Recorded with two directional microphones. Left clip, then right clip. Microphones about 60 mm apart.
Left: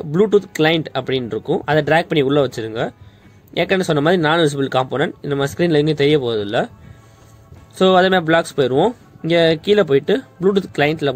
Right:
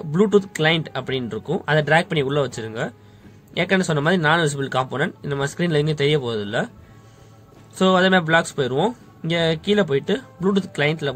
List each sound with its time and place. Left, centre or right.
0.1 s speech: left
7.7 s speech: left
9.3 s speech: left